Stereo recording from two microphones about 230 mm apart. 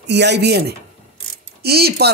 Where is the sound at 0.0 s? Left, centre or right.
Right.